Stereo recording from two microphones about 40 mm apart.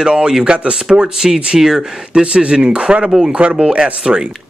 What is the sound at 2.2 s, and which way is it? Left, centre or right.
Speech, right.